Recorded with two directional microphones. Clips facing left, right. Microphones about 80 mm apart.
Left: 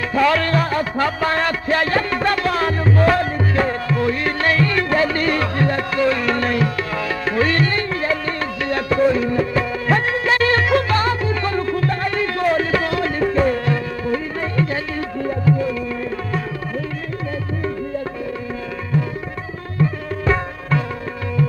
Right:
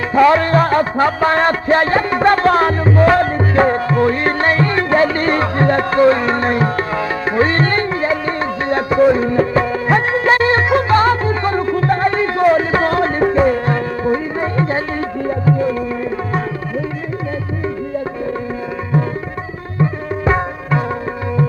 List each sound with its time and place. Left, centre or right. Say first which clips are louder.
0.1 s music: right 6 dB; right
7.6 s music: right 4 dB; right
7.9 s music: right 4 dB; right
9.2 s music: right 5 dB; right
19.8 s music: right 3 dB; right